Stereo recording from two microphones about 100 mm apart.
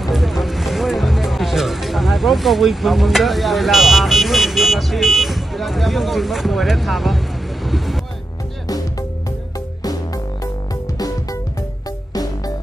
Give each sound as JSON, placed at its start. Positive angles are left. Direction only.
{"t": 0.0, "sound": "music", "side_deg": 0}
{"t": 7.6, "sound": "vehicle", "side_deg": 0}
{"t": 12.1, "sound": "music", "side_deg": 40}